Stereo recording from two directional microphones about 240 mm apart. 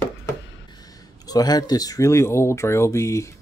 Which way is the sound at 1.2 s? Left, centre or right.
Centre.